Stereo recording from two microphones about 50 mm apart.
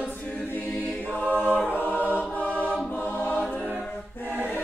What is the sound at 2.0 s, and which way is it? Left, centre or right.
Choir, right.